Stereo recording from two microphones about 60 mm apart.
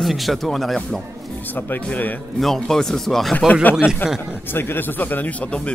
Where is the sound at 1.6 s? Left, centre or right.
Left.